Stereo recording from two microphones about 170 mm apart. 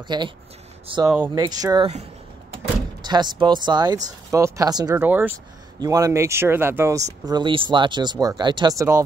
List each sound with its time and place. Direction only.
0.1 s speech: 25° right (ahead or behind)
1.0 s speech: 10° right (ahead or behind)
1.3 s speech: 25° right (ahead or behind)
3.0 s speech: 25° right (ahead or behind)
5.0 s speech: 10° right (ahead or behind)
5.8 s speech: 20° right (ahead or behind)
7.2 s speech: 25° right (ahead or behind)